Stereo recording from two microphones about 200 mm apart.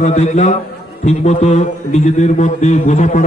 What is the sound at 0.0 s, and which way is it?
A man's voice, 35° left (ahead or behind).